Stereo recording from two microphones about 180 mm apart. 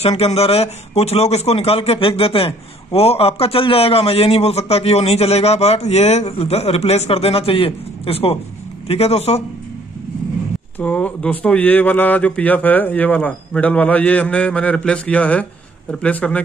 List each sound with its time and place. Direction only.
0.2 s a man's voice: 35° left (ahead or behind)
10.8 s speech: 5° left (ahead or behind)